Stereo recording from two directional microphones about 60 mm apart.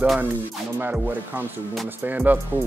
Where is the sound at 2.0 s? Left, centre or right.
Right.